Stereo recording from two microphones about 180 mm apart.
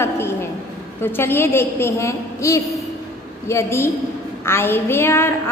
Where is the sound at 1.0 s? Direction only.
10° left (ahead or behind).